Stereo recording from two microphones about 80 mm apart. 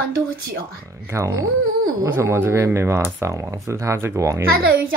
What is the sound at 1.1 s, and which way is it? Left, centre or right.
Speech, right.